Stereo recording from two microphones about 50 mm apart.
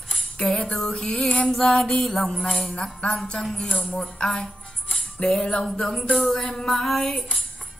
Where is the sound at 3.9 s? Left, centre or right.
Centre.